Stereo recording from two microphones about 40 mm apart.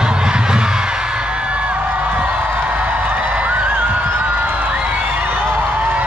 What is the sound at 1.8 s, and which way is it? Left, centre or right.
Music, right.